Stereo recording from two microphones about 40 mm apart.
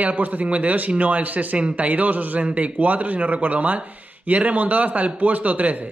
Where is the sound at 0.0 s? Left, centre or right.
Right.